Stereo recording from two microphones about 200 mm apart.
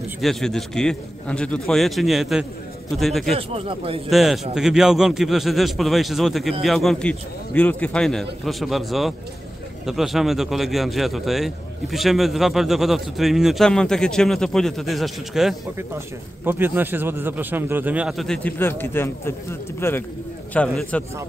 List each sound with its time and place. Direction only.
0.2 s a man's voice: centre (ahead or behind)
3.3 s speech: 30° right (ahead or behind)
4.1 s a man's voice: centre (ahead or behind)